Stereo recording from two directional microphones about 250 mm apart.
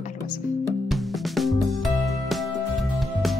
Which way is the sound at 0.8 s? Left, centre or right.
Centre.